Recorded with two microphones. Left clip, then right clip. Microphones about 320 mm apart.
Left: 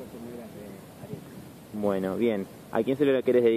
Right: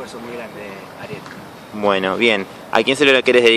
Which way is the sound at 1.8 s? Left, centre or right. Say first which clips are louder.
Right 11 dB; centre.